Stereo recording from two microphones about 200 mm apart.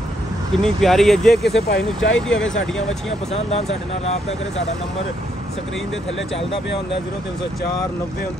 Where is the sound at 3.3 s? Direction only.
30° left (ahead or behind).